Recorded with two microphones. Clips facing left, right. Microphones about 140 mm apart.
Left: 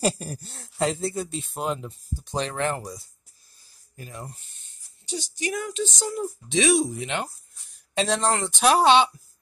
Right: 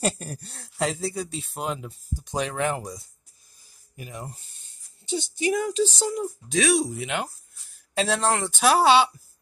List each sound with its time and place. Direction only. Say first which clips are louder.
0.0 s speech: left 2 dB; centre (ahead or behind)
2.1 s speech: right 1 dB; 10° right (ahead or behind)
3.9 s speech: right 1 dB; 15° right (ahead or behind); by 6.0 s 35° right (ahead or behind)
6.2 s speech: left 3 dB; centre (ahead or behind)